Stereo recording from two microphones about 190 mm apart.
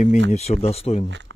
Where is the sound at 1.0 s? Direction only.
75° right (ahead or behind).